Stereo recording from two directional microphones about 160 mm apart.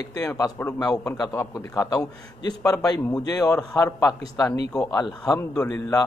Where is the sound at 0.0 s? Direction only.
20° left (ahead or behind).